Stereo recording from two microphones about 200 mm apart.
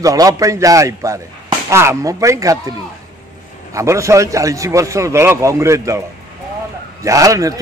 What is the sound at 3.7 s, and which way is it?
Speech, 15° right (ahead or behind).